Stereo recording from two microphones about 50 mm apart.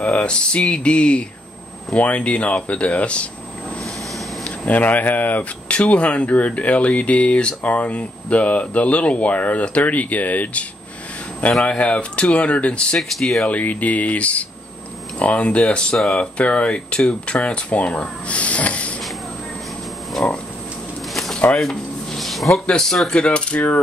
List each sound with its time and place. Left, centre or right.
0.0 s speech: left
4.5 s speech: left
12.9 s speech: centre
13.5 s speech: left
21.1 s a sound: centre
22.7 s speech: centre
23.1 s speech: left